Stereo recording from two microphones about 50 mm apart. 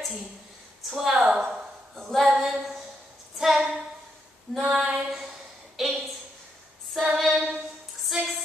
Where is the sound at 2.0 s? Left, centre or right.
Centre.